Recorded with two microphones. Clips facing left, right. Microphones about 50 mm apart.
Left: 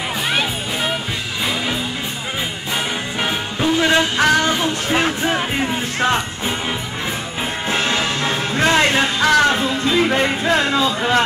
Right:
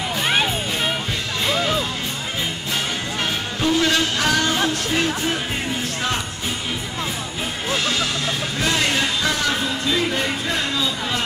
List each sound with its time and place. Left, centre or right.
0.3 s music: centre
3.6 s speech: centre
7.7 s music: left
10.1 s speech: left